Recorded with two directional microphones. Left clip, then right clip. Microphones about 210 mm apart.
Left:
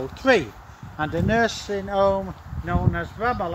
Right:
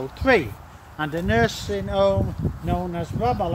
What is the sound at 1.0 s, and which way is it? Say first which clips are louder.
Speech: even; 30° left (ahead or behind).